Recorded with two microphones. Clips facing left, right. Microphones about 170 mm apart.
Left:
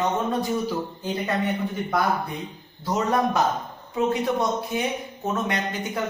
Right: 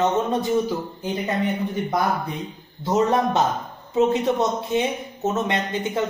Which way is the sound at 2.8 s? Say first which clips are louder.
Right 3 dB; 25° right (ahead or behind).